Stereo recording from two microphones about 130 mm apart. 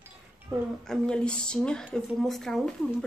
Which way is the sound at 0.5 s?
20° right (ahead or behind).